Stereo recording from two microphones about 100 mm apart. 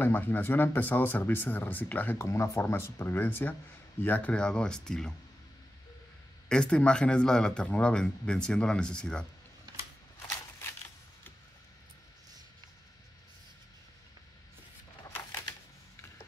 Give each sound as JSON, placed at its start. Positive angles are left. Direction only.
{"t": 0.0, "sound": "speech", "side_deg": 20}
{"t": 2.1, "sound": "speech", "side_deg": 30}
{"t": 6.5, "sound": "speech", "side_deg": 10}
{"t": 10.6, "sound": "a sound", "side_deg": 25}